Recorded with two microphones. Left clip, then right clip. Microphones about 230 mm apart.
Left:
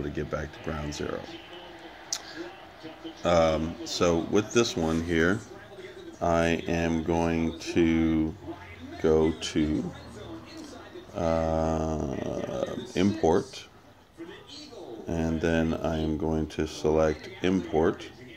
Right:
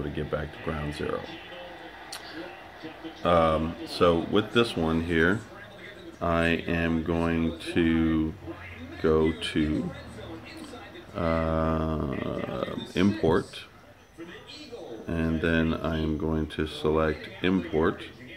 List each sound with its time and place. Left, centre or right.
0.1 s speech: centre
3.2 s speech: centre
9.4 s speech: centre
11.1 s speech: centre
15.0 s speech: centre